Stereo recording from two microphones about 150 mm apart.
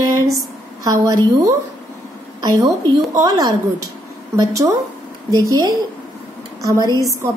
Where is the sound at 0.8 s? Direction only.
25° right (ahead or behind).